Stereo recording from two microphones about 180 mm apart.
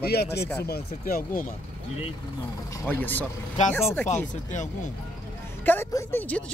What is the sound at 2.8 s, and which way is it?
Speech, 10° left (ahead or behind).